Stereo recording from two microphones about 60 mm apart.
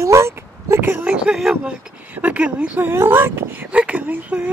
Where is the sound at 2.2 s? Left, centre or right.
Right.